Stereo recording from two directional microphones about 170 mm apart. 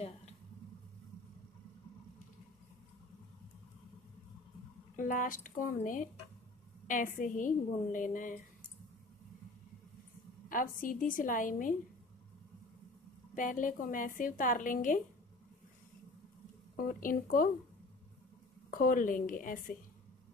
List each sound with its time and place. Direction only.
4.9 s a woman's voice: 50° left (ahead or behind)
10.5 s a woman's voice: 55° left (ahead or behind)
13.3 s a woman's voice: 50° left (ahead or behind)
16.7 s speech: 55° left (ahead or behind)
18.7 s a woman's voice: 55° left (ahead or behind)